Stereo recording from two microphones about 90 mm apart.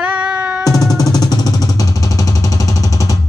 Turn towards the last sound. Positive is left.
turn(degrees=40)  # may be behind; listen again after turning